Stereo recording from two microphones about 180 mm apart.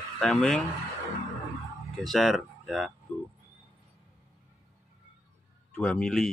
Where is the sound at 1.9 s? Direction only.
Centre (ahead or behind).